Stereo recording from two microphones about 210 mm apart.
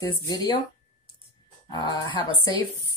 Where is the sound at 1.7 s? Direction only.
20° left (ahead or behind).